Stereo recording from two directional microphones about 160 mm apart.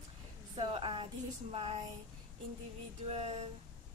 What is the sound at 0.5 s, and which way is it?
Speech, 35° right (ahead or behind).